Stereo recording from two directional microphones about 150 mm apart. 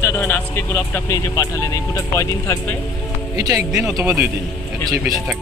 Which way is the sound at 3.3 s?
25° right (ahead or behind).